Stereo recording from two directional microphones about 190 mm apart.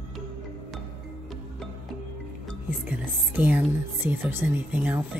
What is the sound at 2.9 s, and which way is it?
Speech, 10° right (ahead or behind).